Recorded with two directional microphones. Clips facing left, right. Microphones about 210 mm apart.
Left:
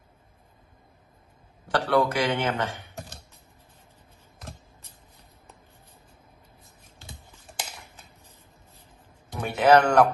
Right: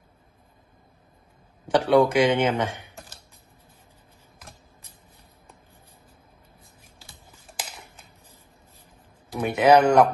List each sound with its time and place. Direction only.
1.7 s speech: 20° right (ahead or behind)
2.5 s typing: centre (ahead or behind)
9.3 s speech: 10° right (ahead or behind)